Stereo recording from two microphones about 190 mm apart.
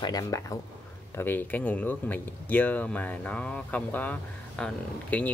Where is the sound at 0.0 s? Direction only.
20° left (ahead or behind).